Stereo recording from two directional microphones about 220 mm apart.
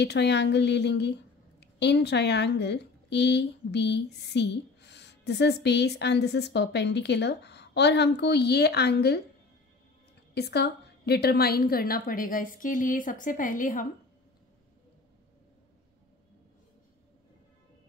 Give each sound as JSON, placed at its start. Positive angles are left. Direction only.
{"t": 0.0, "sound": "speech", "side_deg": 50}
{"t": 10.3, "sound": "a woman's voice", "side_deg": 50}